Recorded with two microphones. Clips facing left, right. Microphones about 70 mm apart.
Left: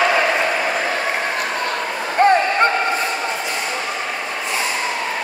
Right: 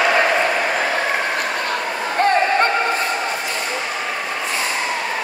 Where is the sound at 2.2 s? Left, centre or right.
Centre.